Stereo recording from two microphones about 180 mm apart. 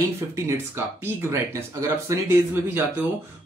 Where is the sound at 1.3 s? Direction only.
15° right (ahead or behind).